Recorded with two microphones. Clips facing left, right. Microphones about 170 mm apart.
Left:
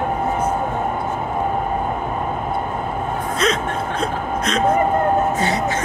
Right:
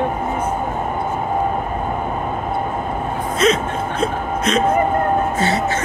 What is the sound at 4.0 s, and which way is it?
Music, centre (ahead or behind).